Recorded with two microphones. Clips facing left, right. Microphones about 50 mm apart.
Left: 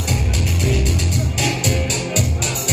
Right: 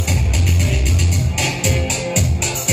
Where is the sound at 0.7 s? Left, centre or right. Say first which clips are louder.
Left 1 dB; right.